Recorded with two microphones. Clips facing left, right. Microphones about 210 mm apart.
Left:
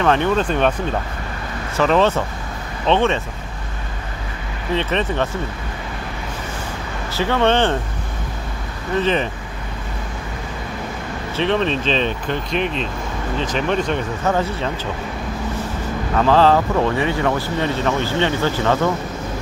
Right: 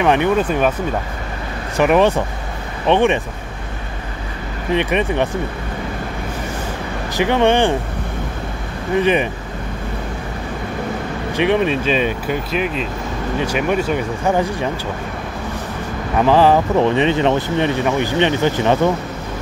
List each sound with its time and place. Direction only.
0.0 s speech: 15° right (ahead or behind)
1.8 s speech: 15° right (ahead or behind)
4.7 s speech: 15° right (ahead or behind)
7.2 s speech: 15° right (ahead or behind)
8.9 s speech: 15° right (ahead or behind)
11.3 s speech: 15° right (ahead or behind)
16.2 s speech: 15° right (ahead or behind)